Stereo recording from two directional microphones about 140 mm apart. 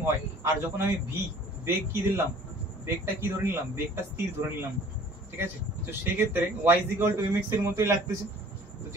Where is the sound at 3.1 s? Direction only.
15° right (ahead or behind).